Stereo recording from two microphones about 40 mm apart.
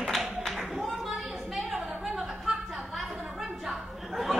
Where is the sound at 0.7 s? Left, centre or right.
Centre.